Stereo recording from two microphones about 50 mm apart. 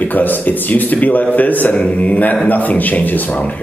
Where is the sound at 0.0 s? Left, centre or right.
Left.